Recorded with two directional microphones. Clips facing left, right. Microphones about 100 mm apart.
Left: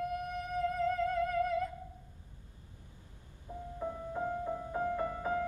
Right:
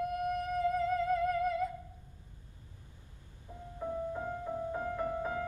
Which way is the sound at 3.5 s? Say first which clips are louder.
Left 5 dB; 20° left (ahead or behind).